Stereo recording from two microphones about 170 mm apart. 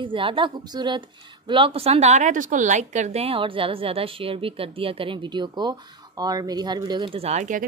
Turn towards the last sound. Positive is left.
turn(degrees=-45)  # may be behind; listen again after turning